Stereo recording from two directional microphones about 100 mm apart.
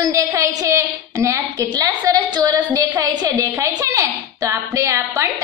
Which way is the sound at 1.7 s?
40° right (ahead or behind).